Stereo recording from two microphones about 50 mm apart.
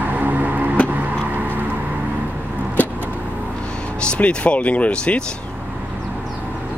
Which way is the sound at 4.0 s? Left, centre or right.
Left.